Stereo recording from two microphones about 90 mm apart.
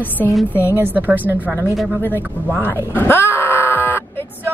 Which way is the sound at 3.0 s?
25° left (ahead or behind).